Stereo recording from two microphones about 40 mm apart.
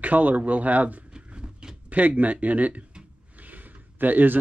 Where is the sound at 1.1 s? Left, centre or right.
Right.